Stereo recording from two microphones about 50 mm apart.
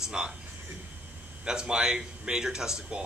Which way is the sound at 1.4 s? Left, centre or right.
Centre.